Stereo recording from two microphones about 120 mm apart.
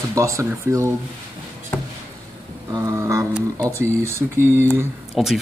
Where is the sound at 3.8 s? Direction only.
20° right (ahead or behind).